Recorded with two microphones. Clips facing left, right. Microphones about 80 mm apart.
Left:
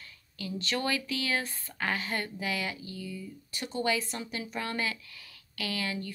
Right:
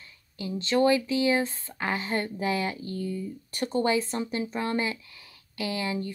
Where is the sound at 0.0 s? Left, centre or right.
Right.